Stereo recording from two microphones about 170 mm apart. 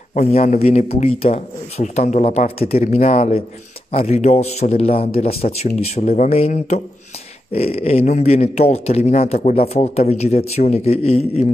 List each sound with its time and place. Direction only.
0.1 s speech: 40° left (ahead or behind)